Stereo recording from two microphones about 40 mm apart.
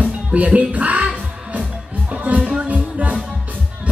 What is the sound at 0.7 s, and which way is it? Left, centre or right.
Music, right.